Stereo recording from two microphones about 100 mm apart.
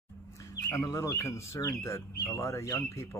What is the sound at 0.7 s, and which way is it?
Speech, 30° left (ahead or behind).